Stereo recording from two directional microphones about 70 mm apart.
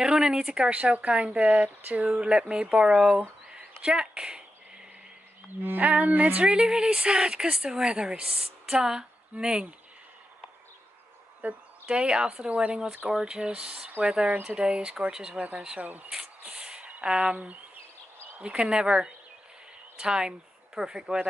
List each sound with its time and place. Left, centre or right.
0.0 s speech: centre
5.6 s speech: right; by 9.7 s centre
11.4 s speech: centre
16.4 s a sound: centre
16.9 s speech: centre
18.4 s speech: centre